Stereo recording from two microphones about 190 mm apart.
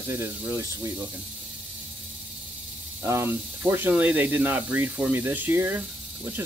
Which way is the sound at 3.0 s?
15° right (ahead or behind).